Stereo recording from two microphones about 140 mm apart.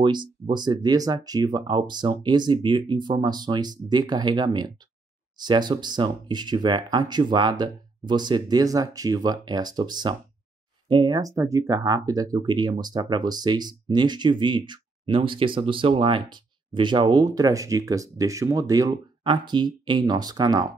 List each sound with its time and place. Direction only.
0.0 s speech: 35° right (ahead or behind)